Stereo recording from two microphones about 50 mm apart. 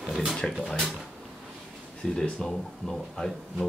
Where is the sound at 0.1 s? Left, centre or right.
Centre.